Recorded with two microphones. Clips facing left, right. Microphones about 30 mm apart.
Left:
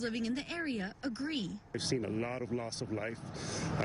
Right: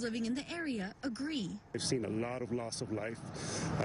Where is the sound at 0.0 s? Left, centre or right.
Centre.